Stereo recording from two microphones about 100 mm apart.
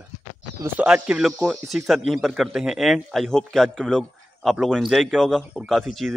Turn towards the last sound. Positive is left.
turn(degrees=0)  # may be behind; listen again after turning